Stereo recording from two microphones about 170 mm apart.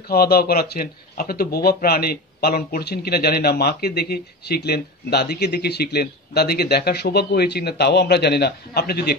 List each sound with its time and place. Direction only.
0.1 s speech: 60° left (ahead or behind)